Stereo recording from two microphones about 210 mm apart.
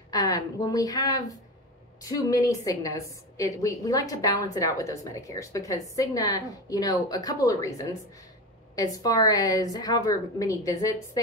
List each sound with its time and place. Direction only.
0.1 s a woman's voice: 15° left (ahead or behind)